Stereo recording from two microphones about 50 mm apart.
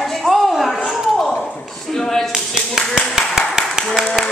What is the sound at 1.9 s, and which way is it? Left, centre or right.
Speech, centre.